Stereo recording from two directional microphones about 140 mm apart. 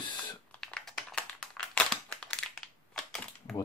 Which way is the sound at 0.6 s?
5° left (ahead or behind).